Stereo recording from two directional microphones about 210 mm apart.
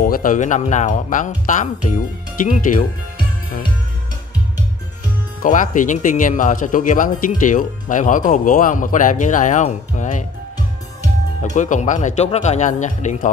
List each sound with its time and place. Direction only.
0.0 s speech: 40° left (ahead or behind)
5.4 s speech: 40° left (ahead or behind)
11.4 s speech: 35° left (ahead or behind)